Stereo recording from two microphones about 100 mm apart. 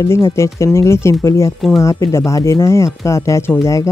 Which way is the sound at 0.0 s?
25° left (ahead or behind).